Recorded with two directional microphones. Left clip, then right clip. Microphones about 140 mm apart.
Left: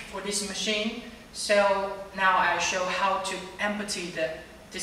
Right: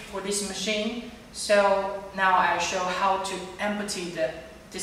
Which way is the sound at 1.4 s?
Centre (ahead or behind).